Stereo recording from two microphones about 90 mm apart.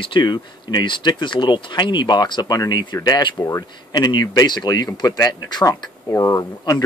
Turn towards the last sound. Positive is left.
turn(degrees=40)  # may be behind; listen again after turning